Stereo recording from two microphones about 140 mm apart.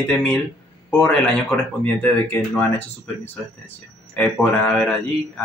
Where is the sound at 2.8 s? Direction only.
15° left (ahead or behind).